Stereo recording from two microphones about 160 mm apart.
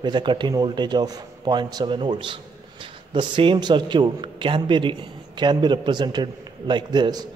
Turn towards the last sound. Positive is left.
turn(degrees=-25)  # may be behind; listen again after turning